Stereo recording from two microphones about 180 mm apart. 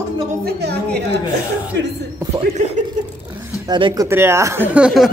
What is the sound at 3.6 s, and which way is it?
Speech, 25° right (ahead or behind).